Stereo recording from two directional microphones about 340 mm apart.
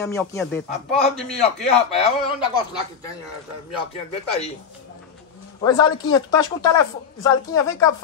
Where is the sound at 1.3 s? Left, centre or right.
Centre.